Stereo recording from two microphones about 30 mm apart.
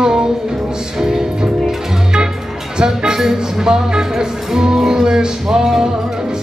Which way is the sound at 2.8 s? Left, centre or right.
Right.